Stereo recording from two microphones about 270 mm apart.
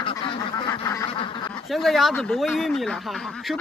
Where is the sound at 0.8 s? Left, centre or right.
Centre.